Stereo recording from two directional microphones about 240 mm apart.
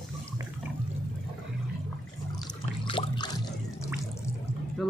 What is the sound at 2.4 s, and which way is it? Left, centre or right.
Water, left.